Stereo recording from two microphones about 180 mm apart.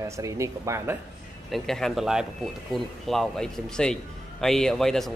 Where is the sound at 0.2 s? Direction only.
15° right (ahead or behind).